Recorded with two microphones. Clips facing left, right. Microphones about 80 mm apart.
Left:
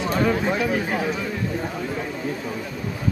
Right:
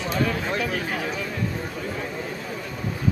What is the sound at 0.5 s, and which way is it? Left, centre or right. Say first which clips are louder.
Speech: left 4 dB; centre.